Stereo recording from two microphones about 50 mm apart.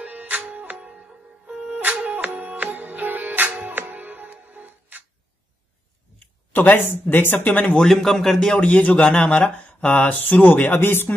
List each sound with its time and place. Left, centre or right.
0.0 s music: right
6.5 s speech: left
7.7 s a man's voice: centre
8.5 s speech: left
9.0 s speech: centre
10.0 s speech: left